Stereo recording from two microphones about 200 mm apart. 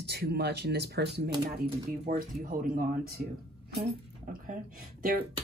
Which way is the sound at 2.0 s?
45° right (ahead or behind).